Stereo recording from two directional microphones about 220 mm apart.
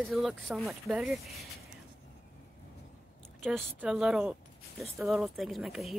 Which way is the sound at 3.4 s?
Centre (ahead or behind).